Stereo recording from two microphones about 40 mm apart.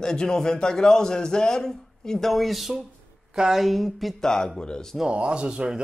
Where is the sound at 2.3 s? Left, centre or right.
Centre.